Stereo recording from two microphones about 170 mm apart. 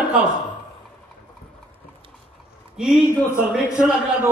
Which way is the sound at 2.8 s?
Centre (ahead or behind).